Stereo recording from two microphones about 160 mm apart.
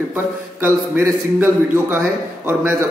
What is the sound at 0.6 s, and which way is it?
Speech, 15° right (ahead or behind).